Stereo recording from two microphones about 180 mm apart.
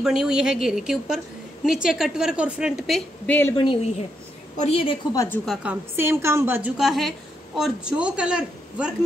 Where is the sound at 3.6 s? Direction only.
30° left (ahead or behind).